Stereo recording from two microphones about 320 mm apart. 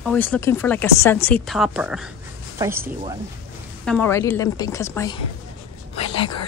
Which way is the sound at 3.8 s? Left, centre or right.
Centre.